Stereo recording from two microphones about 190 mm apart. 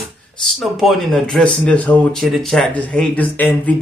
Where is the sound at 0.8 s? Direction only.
Centre (ahead or behind).